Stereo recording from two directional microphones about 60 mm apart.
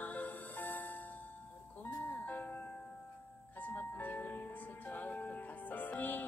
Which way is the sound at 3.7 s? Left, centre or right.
Left.